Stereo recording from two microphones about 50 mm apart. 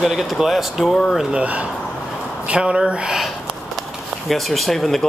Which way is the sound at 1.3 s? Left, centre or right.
Right.